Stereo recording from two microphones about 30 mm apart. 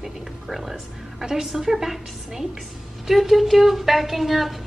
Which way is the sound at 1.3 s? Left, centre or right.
Centre.